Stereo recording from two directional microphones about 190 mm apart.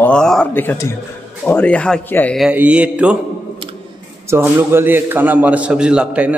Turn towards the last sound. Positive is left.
turn(degrees=-5)  # may be behind; listen again after turning